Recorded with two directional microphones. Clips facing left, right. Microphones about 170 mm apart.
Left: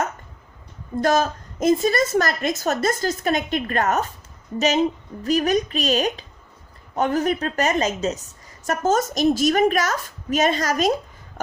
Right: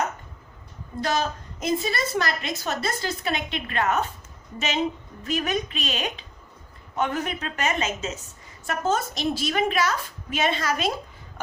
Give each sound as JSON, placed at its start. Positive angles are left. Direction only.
{"t": 1.0, "sound": "a woman's voice", "side_deg": 45}
{"t": 5.2, "sound": "a woman's voice", "side_deg": 40}